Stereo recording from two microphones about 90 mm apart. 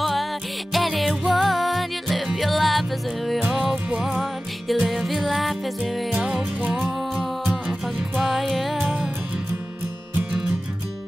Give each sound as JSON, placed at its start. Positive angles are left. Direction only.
{"t": 0.0, "sound": "music", "side_deg": 0}
{"t": 3.3, "sound": "music", "side_deg": -15}
{"t": 4.0, "sound": "music", "side_deg": 0}
{"t": 6.1, "sound": "music", "side_deg": -10}
{"t": 8.2, "sound": "music", "side_deg": 0}
{"t": 8.8, "sound": "music", "side_deg": -10}